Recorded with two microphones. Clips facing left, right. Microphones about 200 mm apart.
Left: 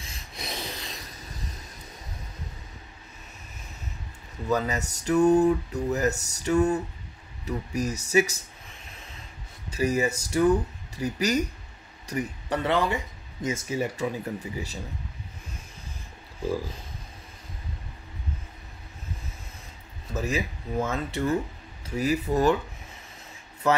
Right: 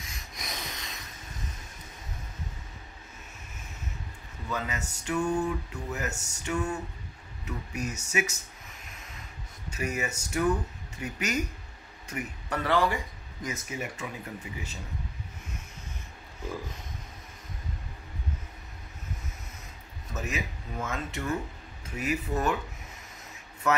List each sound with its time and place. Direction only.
0.0 s rub: 30° left (ahead or behind)
4.5 s speech: 40° left (ahead or behind)
12.6 s speech: 20° left (ahead or behind)
16.4 s speech: 30° left (ahead or behind)
20.2 s speech: 35° left (ahead or behind)